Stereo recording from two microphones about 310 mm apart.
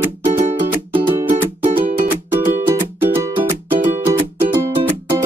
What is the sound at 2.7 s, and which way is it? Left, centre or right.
Music, centre.